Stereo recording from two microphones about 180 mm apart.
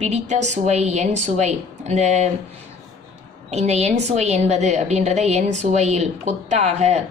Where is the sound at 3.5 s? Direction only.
35° right (ahead or behind).